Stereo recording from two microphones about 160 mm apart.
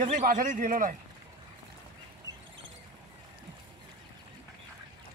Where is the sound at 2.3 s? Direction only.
25° right (ahead or behind).